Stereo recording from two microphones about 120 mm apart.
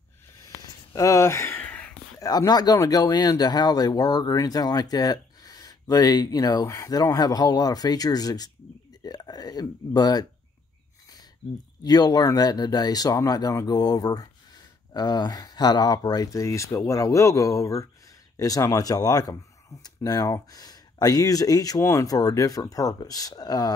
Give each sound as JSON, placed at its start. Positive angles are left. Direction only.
{"t": 0.9, "sound": "a sound", "side_deg": 25}
{"t": 2.1, "sound": "speech", "side_deg": 30}
{"t": 11.8, "sound": "speech", "side_deg": 35}